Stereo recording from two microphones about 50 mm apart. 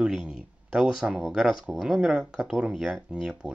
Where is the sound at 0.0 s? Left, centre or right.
Centre.